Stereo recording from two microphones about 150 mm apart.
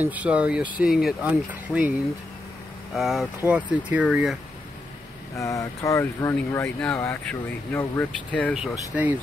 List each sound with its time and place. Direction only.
0.0 s speech: 10° right (ahead or behind)
5.3 s speech: 20° left (ahead or behind)
6.3 s speech: 5° left (ahead or behind)
8.5 s speech: 10° right (ahead or behind)